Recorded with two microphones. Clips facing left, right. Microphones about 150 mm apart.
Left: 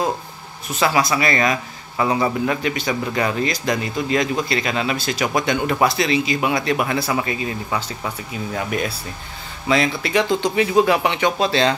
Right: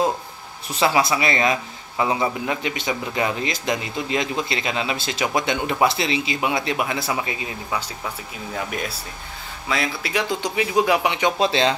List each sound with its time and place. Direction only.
0.7 s speech: 25° right (ahead or behind)
2.0 s speech: 10° right (ahead or behind)
8.5 s speech: centre (ahead or behind); by 11.7 s 20° right (ahead or behind)